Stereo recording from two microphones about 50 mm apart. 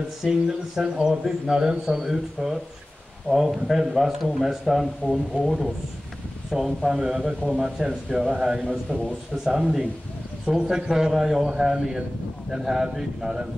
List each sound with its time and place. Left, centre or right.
0.2 s speech: centre
8.6 s a man's voice: centre
9.3 s speech: centre